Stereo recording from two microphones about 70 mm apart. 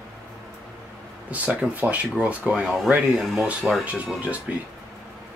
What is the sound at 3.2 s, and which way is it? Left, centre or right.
Speech, centre.